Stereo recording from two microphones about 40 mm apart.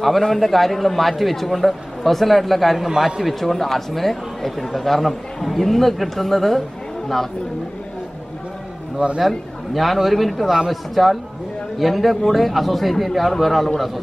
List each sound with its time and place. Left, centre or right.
0.2 s speech: centre
9.0 s a man's voice: right
9.8 s speech: centre